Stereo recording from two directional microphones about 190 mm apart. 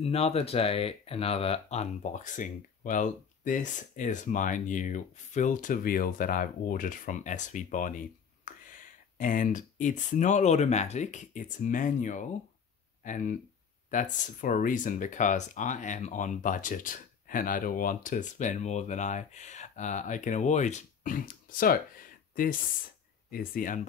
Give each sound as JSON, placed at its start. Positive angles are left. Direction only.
{"t": 0.0, "sound": "speech", "side_deg": 30}